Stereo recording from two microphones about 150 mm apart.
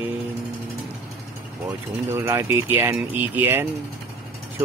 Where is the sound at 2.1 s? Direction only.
20° right (ahead or behind).